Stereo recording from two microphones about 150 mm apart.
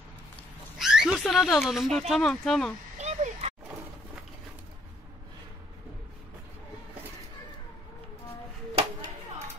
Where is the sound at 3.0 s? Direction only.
45° right (ahead or behind).